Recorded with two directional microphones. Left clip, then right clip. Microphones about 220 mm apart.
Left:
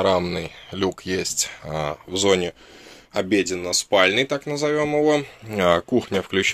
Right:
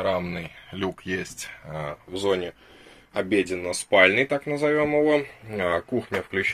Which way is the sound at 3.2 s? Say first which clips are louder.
Left 3 dB; 25° left (ahead or behind).